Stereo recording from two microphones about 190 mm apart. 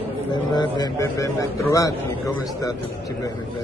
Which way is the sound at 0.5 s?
20° left (ahead or behind).